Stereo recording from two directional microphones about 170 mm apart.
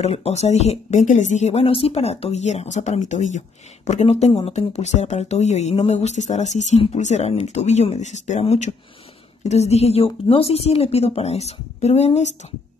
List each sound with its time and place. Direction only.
0.0 s speech: 40° left (ahead or behind)